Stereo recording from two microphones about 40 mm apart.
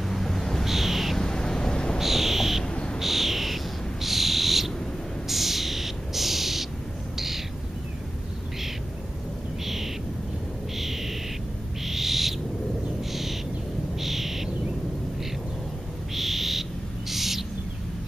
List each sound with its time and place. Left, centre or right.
0.1 s owl: centre
0.7 s owl: centre
1.1 s a sound: centre
2.0 s owl: centre
2.6 s bird: left
3.0 s bird: centre
10.8 s a sound: centre
11.8 s owl: centre
16.2 s frog: centre
17.1 s owl: centre